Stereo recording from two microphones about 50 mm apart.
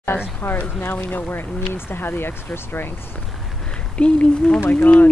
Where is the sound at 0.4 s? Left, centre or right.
Left.